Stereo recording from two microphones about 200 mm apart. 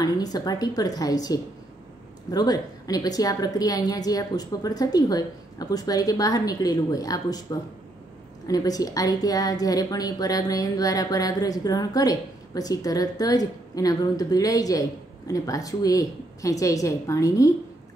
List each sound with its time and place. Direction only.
0.0 s a woman's voice: 20° left (ahead or behind)
8.5 s a woman's voice: 20° left (ahead or behind)